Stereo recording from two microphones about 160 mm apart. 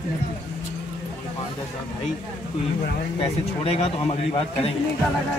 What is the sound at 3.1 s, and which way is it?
Speech, 40° left (ahead or behind).